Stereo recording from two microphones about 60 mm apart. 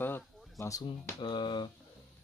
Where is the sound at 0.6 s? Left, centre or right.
Left.